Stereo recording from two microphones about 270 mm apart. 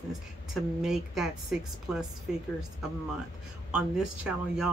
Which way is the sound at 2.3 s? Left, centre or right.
Centre.